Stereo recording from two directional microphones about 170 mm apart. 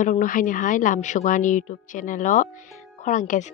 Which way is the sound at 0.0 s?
50° left (ahead or behind).